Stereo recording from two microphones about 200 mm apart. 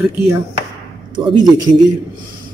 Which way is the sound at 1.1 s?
25° right (ahead or behind).